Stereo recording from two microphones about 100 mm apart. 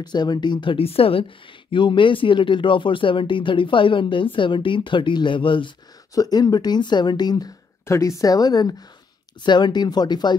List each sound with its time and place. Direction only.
0.0 s speech: 45° left (ahead or behind); by 1.2 s 75° left (ahead or behind)
1.7 s speech: 55° left (ahead or behind)
6.1 s speech: 40° left (ahead or behind)
7.8 s a woman's voice: 30° left (ahead or behind); by 10.3 s 45° left (ahead or behind)